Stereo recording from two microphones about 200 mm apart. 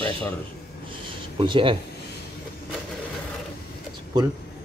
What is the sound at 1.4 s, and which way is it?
Speech, 25° right (ahead or behind).